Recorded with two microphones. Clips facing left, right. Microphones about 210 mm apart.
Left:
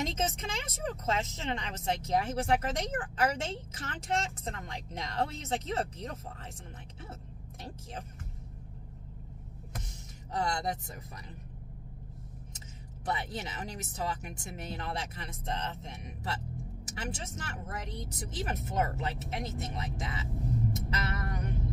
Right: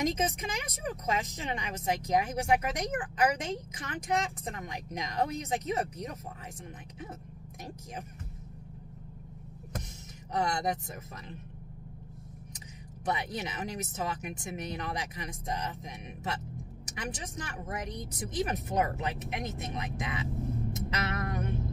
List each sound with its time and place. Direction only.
0.0 s speech: 10° right (ahead or behind)
10.3 s speech: 20° right (ahead or behind)
12.5 s a sound: 20° right (ahead or behind)
13.9 s speech: 20° right (ahead or behind)
20.7 s music: 20° right (ahead or behind)